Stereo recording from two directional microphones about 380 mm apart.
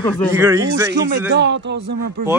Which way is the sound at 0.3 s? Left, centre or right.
Centre.